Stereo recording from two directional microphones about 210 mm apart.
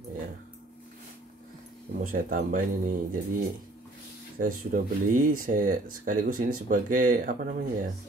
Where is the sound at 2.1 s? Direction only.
40° right (ahead or behind).